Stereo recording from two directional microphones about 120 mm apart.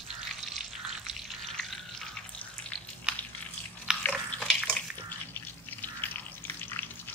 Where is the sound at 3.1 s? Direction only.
10° right (ahead or behind).